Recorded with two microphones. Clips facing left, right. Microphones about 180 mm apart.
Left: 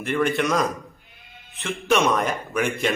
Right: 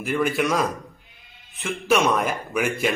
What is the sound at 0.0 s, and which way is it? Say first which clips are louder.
A man's voice: even; centre (ahead or behind).